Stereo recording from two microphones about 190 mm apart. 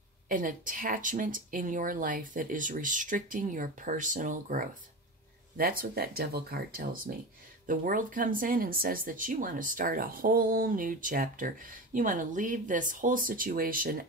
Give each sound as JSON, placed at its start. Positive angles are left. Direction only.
{"t": 0.3, "sound": "speech", "side_deg": -45}